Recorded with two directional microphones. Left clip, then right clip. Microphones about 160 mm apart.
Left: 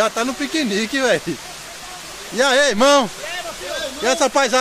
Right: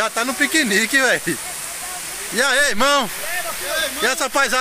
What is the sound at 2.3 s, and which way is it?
Speech, 10° left (ahead or behind).